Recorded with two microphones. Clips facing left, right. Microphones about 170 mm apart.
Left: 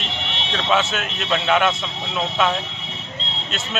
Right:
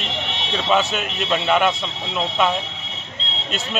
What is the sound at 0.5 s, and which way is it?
Speech, 5° right (ahead or behind).